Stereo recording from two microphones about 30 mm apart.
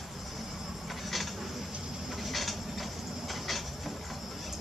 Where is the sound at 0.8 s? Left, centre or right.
Centre.